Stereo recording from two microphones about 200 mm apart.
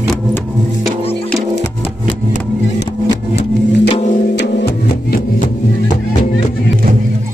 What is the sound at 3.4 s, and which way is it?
Music, 30° left (ahead or behind).